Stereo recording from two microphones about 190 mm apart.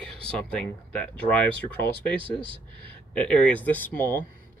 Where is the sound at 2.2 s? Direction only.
25° right (ahead or behind).